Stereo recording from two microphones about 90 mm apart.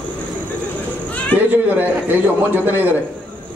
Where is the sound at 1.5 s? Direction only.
20° right (ahead or behind).